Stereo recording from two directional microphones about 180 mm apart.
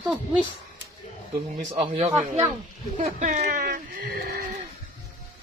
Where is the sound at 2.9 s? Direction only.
45° right (ahead or behind).